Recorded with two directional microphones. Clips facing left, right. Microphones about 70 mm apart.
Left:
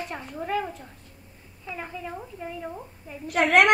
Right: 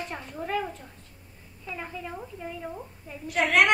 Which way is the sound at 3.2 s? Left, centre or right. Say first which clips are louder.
Left 3 dB; left.